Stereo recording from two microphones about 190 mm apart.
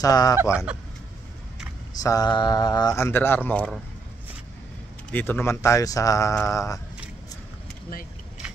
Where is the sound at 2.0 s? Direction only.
20° left (ahead or behind).